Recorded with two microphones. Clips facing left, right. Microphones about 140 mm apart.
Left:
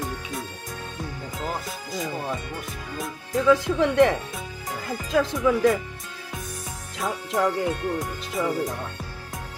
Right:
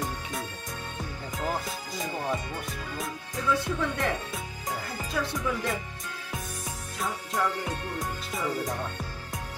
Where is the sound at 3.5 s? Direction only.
90° left.